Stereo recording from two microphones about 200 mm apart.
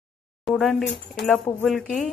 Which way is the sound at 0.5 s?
Centre (ahead or behind).